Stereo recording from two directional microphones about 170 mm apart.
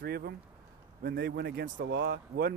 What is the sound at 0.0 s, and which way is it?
Speech, 65° right (ahead or behind).